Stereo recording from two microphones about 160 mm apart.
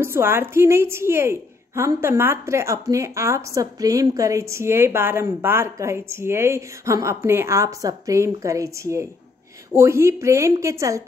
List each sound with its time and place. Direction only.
0.0 s a woman's voice: 15° right (ahead or behind)